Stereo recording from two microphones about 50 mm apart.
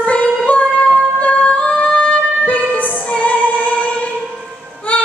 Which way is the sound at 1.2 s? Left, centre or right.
Left.